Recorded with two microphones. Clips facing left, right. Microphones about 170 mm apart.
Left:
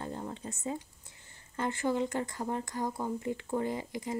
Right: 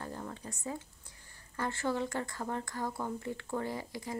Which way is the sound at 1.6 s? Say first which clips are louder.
Left 3 dB; 20° left (ahead or behind).